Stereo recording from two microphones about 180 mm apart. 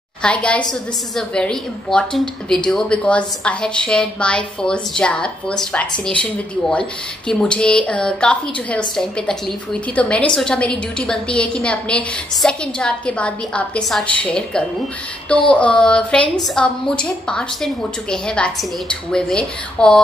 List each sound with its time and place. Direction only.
0.2 s speech: 5° left (ahead or behind)
15.5 s a sound: 5° left (ahead or behind)
16.5 s speech: 5° left (ahead or behind)